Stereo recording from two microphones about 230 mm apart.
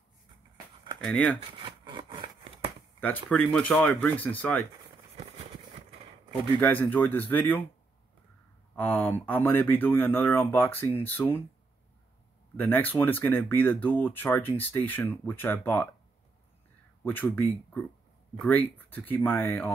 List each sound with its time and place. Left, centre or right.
1.0 s speech: centre
1.4 s a sound: right
3.0 s speech: centre
5.1 s a sound: right
6.6 s speech: centre
8.7 s speech: centre
12.5 s speech: centre
17.0 s speech: centre